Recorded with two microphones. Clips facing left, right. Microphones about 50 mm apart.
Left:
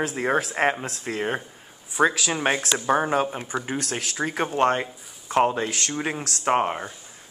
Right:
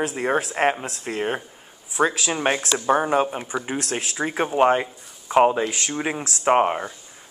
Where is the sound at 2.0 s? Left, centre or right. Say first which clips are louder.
Even; left.